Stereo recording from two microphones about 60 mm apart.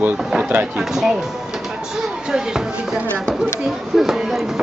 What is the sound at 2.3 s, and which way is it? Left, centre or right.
Speech, centre.